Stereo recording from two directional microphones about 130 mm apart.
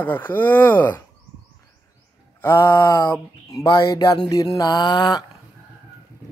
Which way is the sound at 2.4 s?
20° left (ahead or behind).